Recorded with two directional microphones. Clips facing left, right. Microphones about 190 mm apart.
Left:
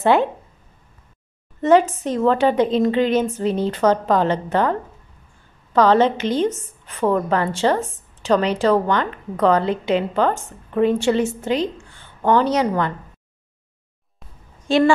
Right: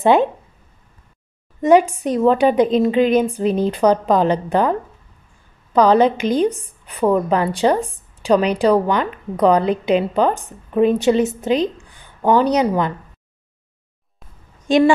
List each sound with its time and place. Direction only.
0.0 s a woman's voice: 20° right (ahead or behind)
1.6 s a woman's voice: 15° right (ahead or behind)
14.7 s a woman's voice: 15° right (ahead or behind)